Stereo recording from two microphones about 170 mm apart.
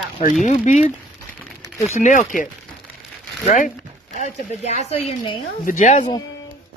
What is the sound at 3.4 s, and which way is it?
Speech, 50° left (ahead or behind).